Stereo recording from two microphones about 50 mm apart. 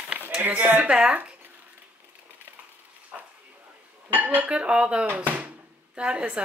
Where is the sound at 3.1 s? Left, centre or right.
Centre.